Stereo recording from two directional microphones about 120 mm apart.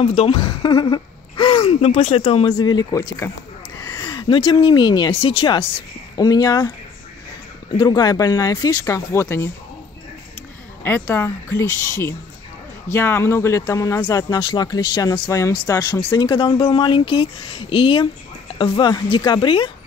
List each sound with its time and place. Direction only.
0.0 s a woman's voice: 60° left (ahead or behind)
0.3 s speech: 35° left (ahead or behind)
3.2 s speech: 20° left (ahead or behind)
4.0 s a sound: 30° left (ahead or behind)
4.3 s speech: 50° left (ahead or behind)
5.1 s speech: 55° left (ahead or behind)
5.5 s speech: 40° left (ahead or behind)
7.7 s speech: 35° left (ahead or behind)
8.9 s speech: 25° left (ahead or behind)
10.8 s speech: 15° left (ahead or behind); by 19.7 s 45° left (ahead or behind)